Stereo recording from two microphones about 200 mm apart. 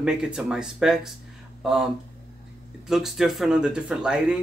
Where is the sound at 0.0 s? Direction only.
5° right (ahead or behind).